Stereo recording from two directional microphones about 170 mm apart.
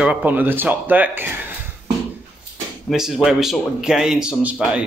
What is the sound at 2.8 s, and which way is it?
A man's voice, centre (ahead or behind).